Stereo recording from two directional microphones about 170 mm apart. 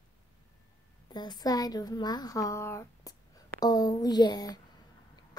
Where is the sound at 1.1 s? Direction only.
25° left (ahead or behind).